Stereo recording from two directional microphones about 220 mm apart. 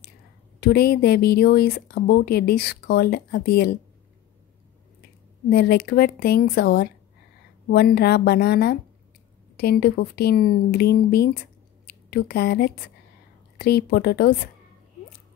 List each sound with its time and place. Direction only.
0.6 s speech: 45° left (ahead or behind)
5.5 s speech: 45° left (ahead or behind)